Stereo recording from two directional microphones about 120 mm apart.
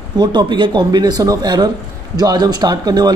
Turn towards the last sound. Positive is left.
turn(degrees=-35)  # may be behind; listen again after turning